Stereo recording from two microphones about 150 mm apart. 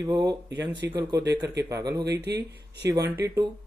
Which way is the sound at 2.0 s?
90° right.